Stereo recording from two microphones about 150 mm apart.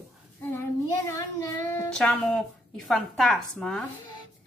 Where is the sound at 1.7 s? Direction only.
5° left (ahead or behind).